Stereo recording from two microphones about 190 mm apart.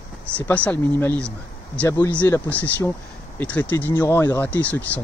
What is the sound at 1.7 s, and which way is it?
Speech, 15° left (ahead or behind).